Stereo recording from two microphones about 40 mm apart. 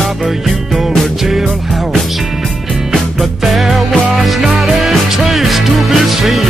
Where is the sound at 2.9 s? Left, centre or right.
Centre.